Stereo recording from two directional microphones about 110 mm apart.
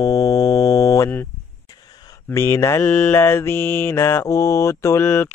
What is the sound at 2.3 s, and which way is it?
Mantra, 25° left (ahead or behind).